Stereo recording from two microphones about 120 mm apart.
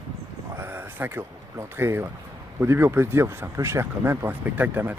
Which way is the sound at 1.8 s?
20° right (ahead or behind).